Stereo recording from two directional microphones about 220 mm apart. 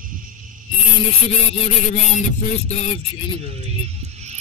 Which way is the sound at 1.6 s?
30° left (ahead or behind).